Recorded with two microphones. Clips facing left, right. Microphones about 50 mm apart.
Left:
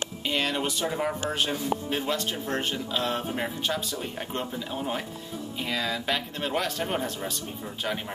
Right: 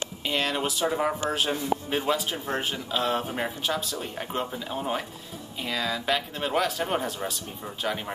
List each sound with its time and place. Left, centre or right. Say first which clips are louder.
0.2 s a man's voice: right 1 dB; centre